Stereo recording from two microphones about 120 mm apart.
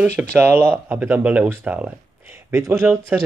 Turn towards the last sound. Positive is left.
turn(degrees=-15)  # may be behind; listen again after turning